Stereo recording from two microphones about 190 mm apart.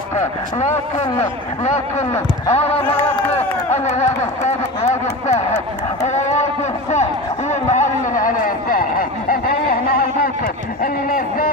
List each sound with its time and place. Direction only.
0.6 s speech: 35° left (ahead or behind)
9.3 s a sound: 50° left (ahead or behind)
10.8 s speech: 45° left (ahead or behind)